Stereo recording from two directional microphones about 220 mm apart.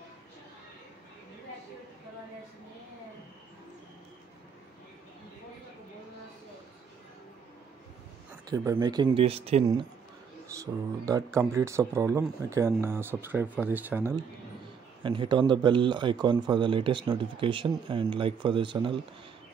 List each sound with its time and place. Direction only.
8.5 s speech: 20° right (ahead or behind)
10.6 s speech: 15° right (ahead or behind)
15.0 s speech: 20° right (ahead or behind)